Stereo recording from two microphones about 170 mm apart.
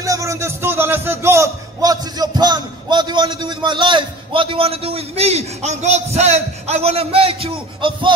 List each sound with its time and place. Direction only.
0.0 s a man's voice: 20° right (ahead or behind)